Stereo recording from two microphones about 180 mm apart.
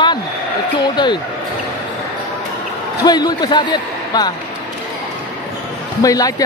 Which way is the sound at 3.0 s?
25° left (ahead or behind).